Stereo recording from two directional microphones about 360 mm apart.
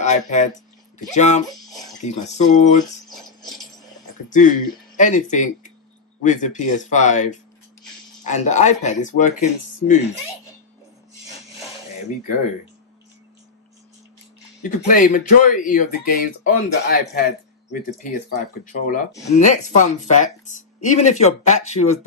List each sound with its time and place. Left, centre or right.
0.0 s speech: centre
1.6 s speech: centre
2.0 s speech: centre
3.1 s cutlery: centre
4.3 s speech: left
14.6 s speech: left
18.7 s speech: left